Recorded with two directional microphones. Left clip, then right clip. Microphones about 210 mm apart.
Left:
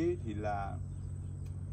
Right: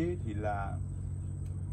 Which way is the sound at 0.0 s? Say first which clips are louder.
Even; 5° left (ahead or behind).